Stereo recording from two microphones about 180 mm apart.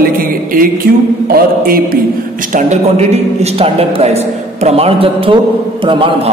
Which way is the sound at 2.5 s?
40° right (ahead or behind).